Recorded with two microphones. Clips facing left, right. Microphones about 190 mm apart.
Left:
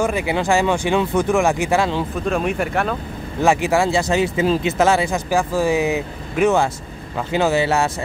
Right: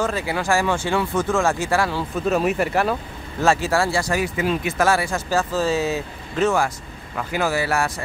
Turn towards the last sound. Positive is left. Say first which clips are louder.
# left 4 dB
turn(degrees=25)  # may be behind; listen again after turning